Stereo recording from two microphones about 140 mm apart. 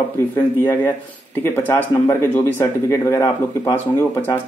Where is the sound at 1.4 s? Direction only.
15° left (ahead or behind).